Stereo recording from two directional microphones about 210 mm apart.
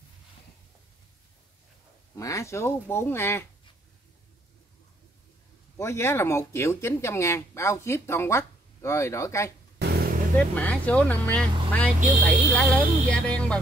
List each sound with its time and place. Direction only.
2.1 s speech: 15° left (ahead or behind)
5.8 s speech: 15° left (ahead or behind)
9.8 s vehicle: 50° right (ahead or behind)
10.5 s speech: 5° left (ahead or behind)
13.1 s music: 5° left (ahead or behind)